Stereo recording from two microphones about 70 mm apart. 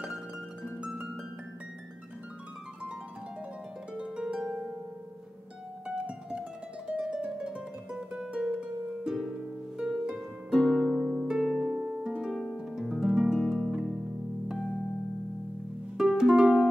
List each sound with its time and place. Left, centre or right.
0.7 s music: centre
3.9 s harp: centre
5.9 s music: centre
9.8 s harp: centre
11.5 s music: centre
11.8 s harp: centre
12.3 s harp: centre
13.4 s music: centre
16.0 s music: centre